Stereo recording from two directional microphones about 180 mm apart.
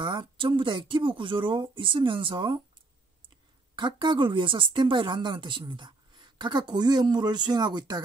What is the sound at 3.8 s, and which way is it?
Speech, 25° right (ahead or behind).